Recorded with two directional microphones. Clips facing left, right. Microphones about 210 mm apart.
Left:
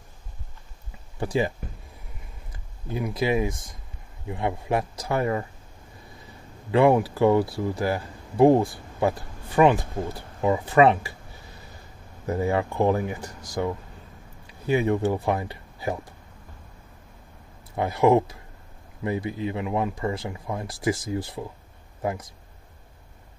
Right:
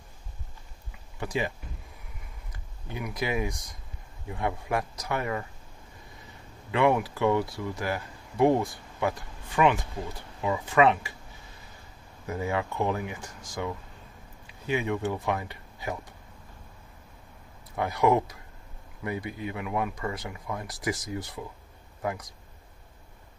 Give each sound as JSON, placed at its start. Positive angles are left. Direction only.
{"t": 1.2, "sound": "speech", "side_deg": 35}
{"t": 2.9, "sound": "speech", "side_deg": 25}
{"t": 6.7, "sound": "speech", "side_deg": 35}
{"t": 12.3, "sound": "speech", "side_deg": 35}
{"t": 14.7, "sound": "speech", "side_deg": 35}
{"t": 17.7, "sound": "speech", "side_deg": 25}